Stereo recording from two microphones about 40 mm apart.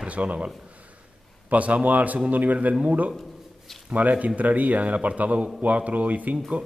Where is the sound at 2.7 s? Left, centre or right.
Right.